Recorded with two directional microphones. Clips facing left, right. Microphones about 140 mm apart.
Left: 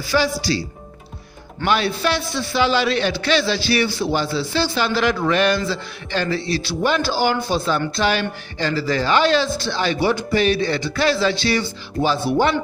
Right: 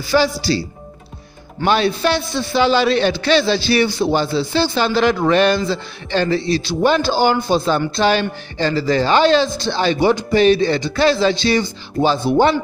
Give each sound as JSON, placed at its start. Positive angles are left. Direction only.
{"t": 0.1, "sound": "a man's voice", "side_deg": -30}